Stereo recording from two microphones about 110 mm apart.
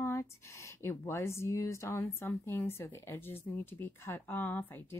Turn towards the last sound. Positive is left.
turn(degrees=20)  # may be behind; listen again after turning